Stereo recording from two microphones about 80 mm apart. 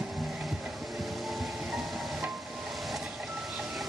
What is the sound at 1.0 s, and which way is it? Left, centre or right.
Music, centre.